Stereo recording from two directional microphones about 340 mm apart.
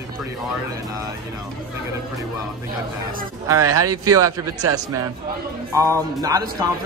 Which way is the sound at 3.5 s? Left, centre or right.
Centre.